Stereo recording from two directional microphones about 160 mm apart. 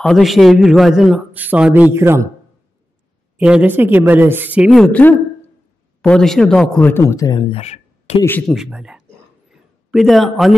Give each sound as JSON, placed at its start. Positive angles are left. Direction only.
{"t": 0.0, "sound": "a man's voice", "side_deg": 0}
{"t": 3.3, "sound": "speech", "side_deg": -5}
{"t": 4.6, "sound": "a man's voice", "side_deg": 0}
{"t": 6.0, "sound": "speech", "side_deg": 5}
{"t": 7.4, "sound": "speech", "side_deg": 40}
{"t": 8.2, "sound": "speech", "side_deg": 10}
{"t": 8.5, "sound": "a man's voice", "side_deg": -5}
{"t": 9.5, "sound": "a sound", "side_deg": -5}